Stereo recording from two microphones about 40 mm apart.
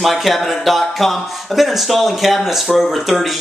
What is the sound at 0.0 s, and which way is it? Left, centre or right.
Speech, centre.